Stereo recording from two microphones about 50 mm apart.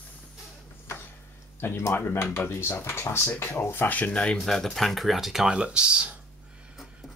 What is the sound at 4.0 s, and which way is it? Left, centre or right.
Speech, left.